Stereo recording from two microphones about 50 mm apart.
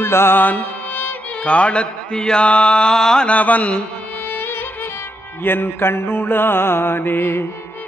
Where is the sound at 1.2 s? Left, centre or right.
Left.